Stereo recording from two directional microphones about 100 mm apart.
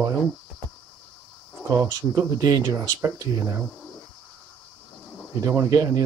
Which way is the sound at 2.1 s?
35° right (ahead or behind).